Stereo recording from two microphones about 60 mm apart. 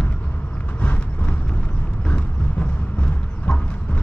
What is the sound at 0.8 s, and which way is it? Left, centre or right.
Horse, left.